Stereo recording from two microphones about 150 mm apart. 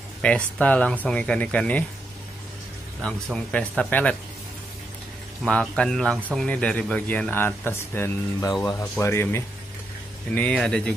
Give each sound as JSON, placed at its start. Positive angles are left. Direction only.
{"t": 0.2, "sound": "speech", "side_deg": 10}
{"t": 3.0, "sound": "speech", "side_deg": 5}
{"t": 5.4, "sound": "a man's voice", "side_deg": 5}
{"t": 10.3, "sound": "speech", "side_deg": 5}